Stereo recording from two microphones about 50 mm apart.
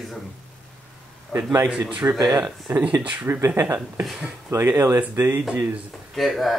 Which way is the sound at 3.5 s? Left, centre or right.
Right.